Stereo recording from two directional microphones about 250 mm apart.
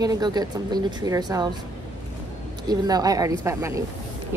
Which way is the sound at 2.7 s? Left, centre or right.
Centre.